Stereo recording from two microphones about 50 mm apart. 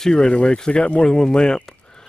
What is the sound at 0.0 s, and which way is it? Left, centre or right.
Speech, centre.